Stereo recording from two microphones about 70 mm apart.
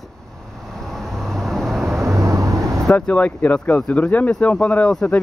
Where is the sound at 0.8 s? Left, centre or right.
Centre.